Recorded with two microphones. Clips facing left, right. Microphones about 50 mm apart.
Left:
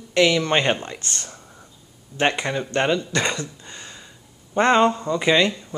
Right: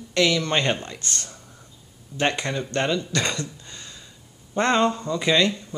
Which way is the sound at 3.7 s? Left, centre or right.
Centre.